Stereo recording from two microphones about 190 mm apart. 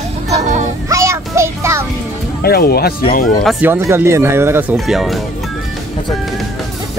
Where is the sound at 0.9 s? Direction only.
15° right (ahead or behind).